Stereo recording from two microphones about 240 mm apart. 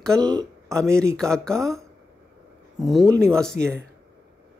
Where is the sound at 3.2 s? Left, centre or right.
Centre.